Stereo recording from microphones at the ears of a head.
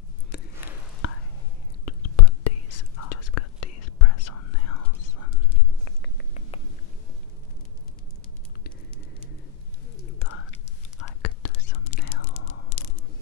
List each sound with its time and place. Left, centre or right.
0.3 s whispering: left
10.1 s whispering: left